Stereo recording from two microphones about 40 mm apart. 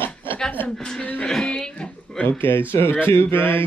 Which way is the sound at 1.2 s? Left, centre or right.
Centre.